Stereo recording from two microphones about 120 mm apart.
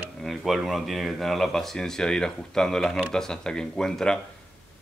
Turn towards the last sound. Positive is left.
turn(degrees=5)  # may be behind; listen again after turning